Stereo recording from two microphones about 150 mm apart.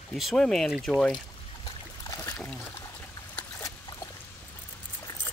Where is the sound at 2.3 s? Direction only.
10° left (ahead or behind).